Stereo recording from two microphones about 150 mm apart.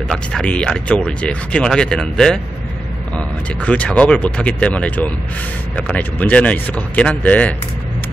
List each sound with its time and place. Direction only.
0.1 s speech: 5° left (ahead or behind)